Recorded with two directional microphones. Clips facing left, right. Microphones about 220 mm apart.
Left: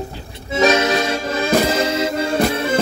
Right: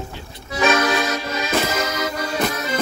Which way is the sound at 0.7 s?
25° left (ahead or behind).